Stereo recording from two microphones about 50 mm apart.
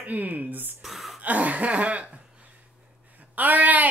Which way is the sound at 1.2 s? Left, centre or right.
Right.